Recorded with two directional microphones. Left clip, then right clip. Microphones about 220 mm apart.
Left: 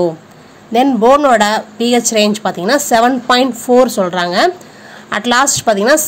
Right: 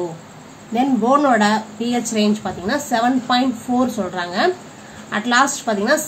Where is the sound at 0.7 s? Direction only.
50° left (ahead or behind).